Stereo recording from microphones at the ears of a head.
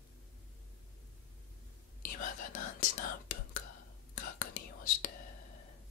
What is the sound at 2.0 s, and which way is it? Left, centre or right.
Whispering, left.